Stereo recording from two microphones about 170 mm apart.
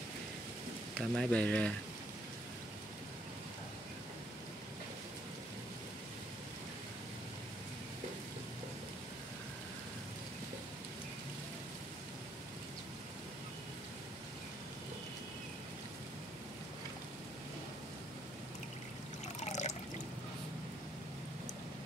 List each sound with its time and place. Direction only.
0.9 s speech: 5° left (ahead or behind)
19.2 s water: 40° left (ahead or behind)